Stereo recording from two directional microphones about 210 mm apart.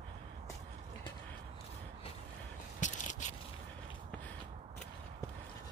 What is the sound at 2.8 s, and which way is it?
Crushing, 35° left (ahead or behind).